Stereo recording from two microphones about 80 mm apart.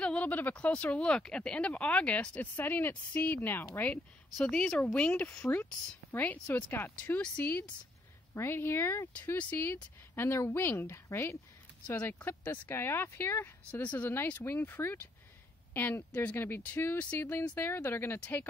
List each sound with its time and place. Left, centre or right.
0.0 s a woman's voice: centre
4.4 s a woman's voice: centre